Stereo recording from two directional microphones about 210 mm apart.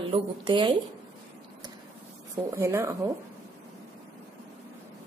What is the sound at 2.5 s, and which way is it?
Speech, 15° right (ahead or behind).